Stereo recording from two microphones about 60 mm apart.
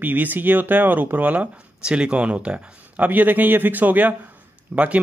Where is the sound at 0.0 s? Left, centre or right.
Right.